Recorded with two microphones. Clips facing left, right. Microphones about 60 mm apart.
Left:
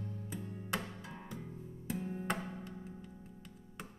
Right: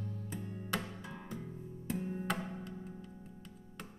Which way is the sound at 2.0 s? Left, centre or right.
Centre.